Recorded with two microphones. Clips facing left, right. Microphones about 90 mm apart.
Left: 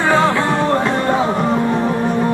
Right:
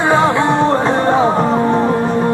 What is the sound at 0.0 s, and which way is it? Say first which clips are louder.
Music: right 2 dB; 20° right (ahead or behind).